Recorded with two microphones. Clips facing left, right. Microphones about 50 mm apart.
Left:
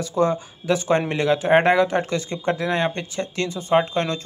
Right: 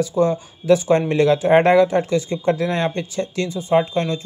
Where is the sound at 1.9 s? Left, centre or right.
Left.